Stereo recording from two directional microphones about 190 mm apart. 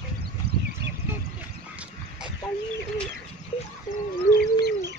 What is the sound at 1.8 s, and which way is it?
Duck, 5° right (ahead or behind).